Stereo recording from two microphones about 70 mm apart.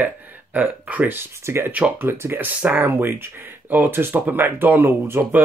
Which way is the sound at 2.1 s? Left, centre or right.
Right.